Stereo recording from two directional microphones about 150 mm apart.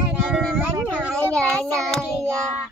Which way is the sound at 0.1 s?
5° right (ahead or behind).